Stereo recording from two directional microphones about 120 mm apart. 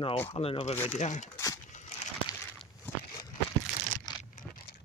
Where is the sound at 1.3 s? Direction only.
25° left (ahead or behind).